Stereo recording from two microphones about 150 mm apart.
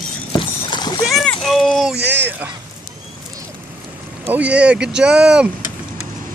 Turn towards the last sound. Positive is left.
turn(degrees=-5)  # may be behind; listen again after turning